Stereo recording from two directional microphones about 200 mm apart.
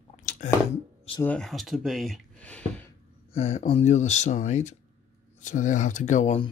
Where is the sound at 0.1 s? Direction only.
40° left (ahead or behind).